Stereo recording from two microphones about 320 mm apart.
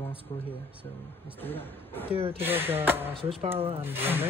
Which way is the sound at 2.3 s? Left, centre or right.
Centre.